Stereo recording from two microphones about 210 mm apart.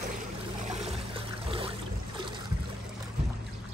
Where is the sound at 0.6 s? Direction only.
30° right (ahead or behind).